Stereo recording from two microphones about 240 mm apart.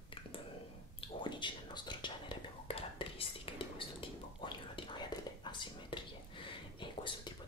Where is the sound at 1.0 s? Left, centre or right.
Centre.